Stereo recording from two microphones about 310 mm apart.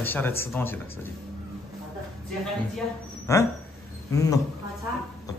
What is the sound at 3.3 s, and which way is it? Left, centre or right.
A man's voice, centre.